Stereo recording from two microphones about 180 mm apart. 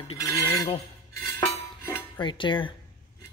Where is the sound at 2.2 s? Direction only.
25° left (ahead or behind).